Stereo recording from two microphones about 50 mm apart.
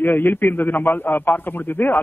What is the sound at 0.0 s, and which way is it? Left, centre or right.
A man's voice, left.